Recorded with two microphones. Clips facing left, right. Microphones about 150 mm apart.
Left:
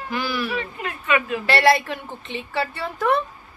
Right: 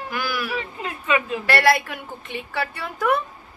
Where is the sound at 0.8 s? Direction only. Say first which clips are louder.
Even; 25° right (ahead or behind).